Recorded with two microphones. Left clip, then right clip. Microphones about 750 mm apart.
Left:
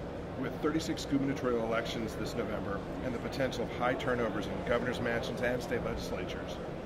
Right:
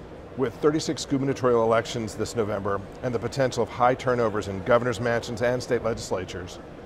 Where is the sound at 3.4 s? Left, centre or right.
Right.